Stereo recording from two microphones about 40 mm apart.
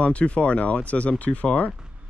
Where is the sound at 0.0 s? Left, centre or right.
Left.